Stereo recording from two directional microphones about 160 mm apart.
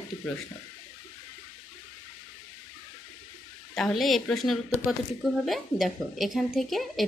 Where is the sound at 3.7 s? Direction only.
Centre (ahead or behind).